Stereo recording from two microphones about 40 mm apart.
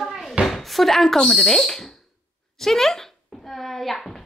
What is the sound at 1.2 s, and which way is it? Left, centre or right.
Speech, centre.